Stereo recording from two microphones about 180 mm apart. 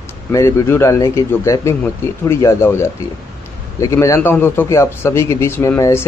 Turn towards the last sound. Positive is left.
turn(degrees=15)  # may be behind; listen again after turning